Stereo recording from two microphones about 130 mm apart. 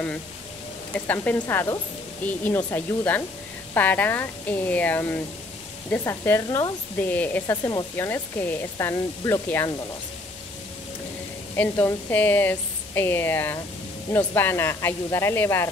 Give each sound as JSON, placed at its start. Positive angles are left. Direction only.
{"t": 0.9, "sound": "speech", "side_deg": 10}
{"t": 11.5, "sound": "speech", "side_deg": 15}